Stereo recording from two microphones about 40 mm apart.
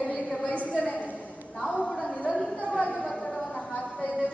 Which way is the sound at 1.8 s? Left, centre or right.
Centre.